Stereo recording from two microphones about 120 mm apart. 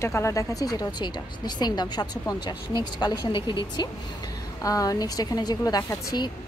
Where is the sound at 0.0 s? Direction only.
25° left (ahead or behind).